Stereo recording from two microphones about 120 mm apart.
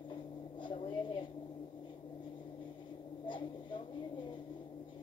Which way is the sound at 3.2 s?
40° left (ahead or behind).